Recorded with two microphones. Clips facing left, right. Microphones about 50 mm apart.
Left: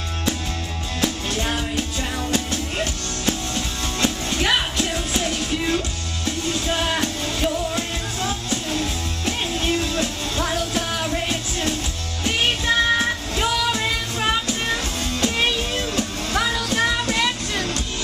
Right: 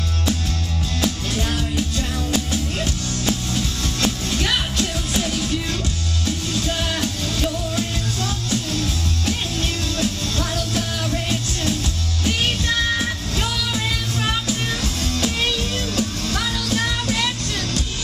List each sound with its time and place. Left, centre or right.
1.0 s music: centre
3.5 s music: centre